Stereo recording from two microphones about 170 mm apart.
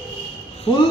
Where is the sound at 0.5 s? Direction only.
35° left (ahead or behind).